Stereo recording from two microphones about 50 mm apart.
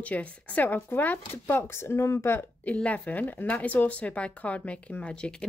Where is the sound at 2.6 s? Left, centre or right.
Left.